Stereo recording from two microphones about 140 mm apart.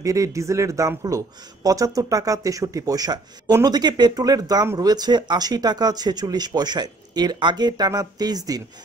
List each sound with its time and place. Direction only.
0.0 s speech: 25° right (ahead or behind)